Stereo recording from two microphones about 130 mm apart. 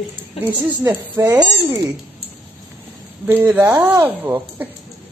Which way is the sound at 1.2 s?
30° right (ahead or behind).